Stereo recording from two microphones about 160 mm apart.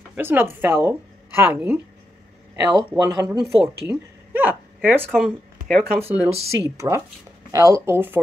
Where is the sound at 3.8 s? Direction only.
10° right (ahead or behind).